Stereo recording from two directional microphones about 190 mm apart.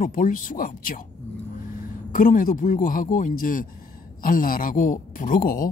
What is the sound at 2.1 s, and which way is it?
Speech, 45° left (ahead or behind).